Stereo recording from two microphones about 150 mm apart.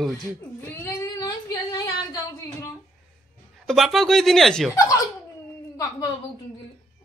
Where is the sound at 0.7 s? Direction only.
20° left (ahead or behind).